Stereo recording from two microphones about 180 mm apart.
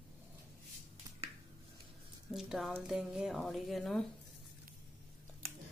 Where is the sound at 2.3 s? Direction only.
Centre (ahead or behind).